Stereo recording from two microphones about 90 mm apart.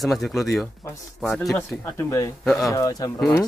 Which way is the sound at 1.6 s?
25° left (ahead or behind).